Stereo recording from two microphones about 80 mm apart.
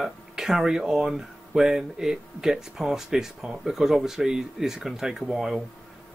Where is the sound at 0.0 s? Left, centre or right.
Centre.